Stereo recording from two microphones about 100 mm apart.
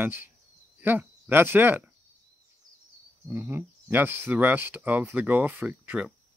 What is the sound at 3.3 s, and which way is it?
Speech, 25° right (ahead or behind).